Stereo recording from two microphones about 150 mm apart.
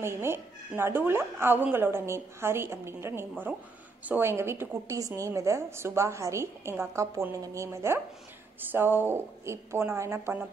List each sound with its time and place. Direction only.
0.0 s a woman's voice: 15° right (ahead or behind)